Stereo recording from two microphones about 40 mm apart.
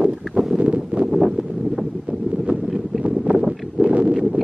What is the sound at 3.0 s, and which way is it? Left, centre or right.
Boat, right.